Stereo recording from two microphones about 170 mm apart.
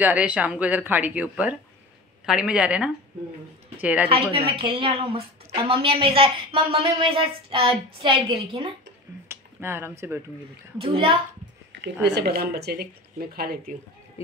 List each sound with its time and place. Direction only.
0.0 s speech: 10° right (ahead or behind)
4.1 s a woman's voice: 30° right (ahead or behind)
9.3 s speech: 15° right (ahead or behind)
10.8 s a woman's voice: 35° right (ahead or behind)
11.7 s speech: 85° right; by 13.7 s 65° right (ahead or behind)